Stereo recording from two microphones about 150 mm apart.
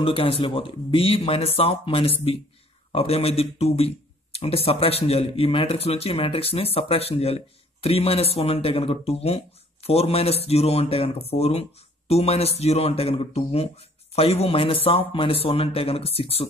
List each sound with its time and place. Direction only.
0.0 s speech: 40° left (ahead or behind)